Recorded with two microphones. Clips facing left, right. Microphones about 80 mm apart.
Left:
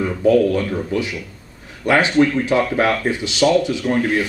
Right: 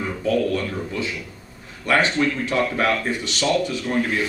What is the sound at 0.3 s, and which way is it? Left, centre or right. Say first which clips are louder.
Speech: left 6 dB; centre.